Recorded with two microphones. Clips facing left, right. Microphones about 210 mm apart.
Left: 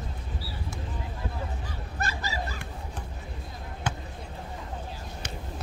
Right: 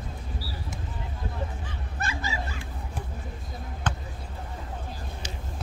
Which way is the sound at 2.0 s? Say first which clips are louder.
Even; 35° left (ahead or behind).